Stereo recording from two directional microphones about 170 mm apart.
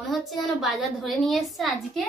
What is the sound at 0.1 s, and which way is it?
Speech, centre (ahead or behind).